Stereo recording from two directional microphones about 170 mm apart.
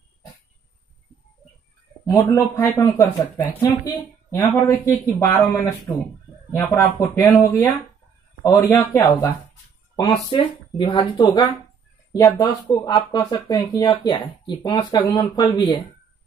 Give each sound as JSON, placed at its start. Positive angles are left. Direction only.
{"t": 2.0, "sound": "speech", "side_deg": 20}